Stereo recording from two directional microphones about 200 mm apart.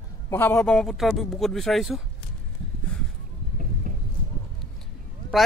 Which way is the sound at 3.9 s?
40° right (ahead or behind).